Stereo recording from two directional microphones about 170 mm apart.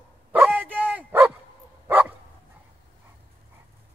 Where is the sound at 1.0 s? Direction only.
15° right (ahead or behind).